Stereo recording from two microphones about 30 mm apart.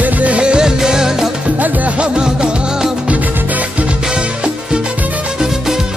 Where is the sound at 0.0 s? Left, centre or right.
Right.